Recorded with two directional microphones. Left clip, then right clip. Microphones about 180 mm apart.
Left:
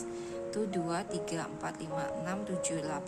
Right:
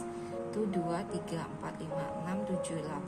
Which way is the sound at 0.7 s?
35° left (ahead or behind).